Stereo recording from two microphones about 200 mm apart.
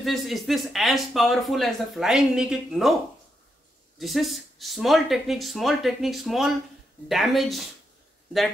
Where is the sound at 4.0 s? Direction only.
Centre (ahead or behind).